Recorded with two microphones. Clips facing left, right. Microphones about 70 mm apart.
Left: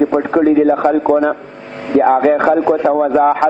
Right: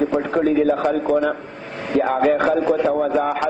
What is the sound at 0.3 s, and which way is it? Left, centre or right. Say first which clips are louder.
A man's voice: left 7 dB; left.